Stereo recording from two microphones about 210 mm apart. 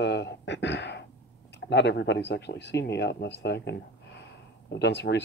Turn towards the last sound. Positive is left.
turn(degrees=55)  # may be behind; listen again after turning